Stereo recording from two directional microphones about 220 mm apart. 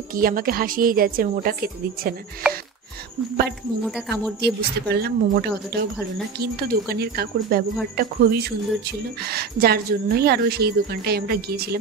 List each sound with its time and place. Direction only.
0.1 s a woman's voice: 40° right (ahead or behind)
3.8 s speech: 5° left (ahead or behind)
4.4 s a woman's voice: 45° right (ahead or behind)